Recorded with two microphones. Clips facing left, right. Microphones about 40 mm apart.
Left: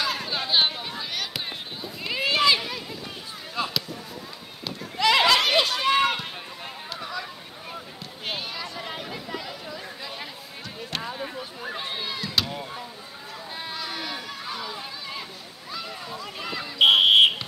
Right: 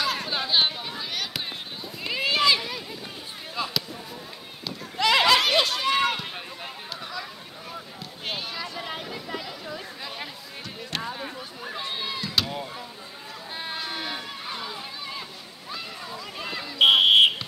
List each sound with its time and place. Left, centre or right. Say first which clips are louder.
0.0 s a sound: even; centre
3.6 s basketball bounce: left 2 dB; centre
4.9 s run: even; centre
7.0 s chatter: left 3 dB; centre
8.3 s a sound: even; centre
12.4 s vehicle: even; centre
13.7 s run: right 1 dB; right
16.5 s fire alarm: even; centre